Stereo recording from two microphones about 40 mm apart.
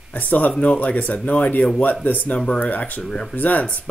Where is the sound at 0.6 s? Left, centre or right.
Left.